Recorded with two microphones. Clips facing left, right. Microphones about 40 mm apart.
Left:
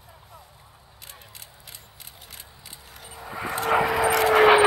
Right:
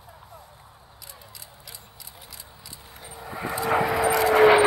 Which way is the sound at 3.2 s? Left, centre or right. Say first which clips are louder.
Even; centre.